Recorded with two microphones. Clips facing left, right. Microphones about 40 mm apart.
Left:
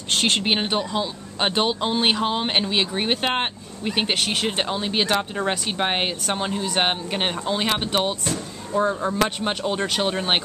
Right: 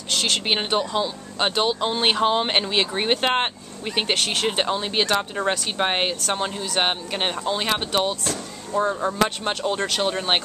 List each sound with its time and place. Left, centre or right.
0.1 s a sound: left
0.4 s speech: centre
1.5 s speech: centre